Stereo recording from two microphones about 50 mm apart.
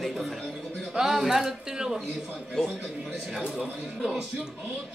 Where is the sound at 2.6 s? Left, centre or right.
Centre.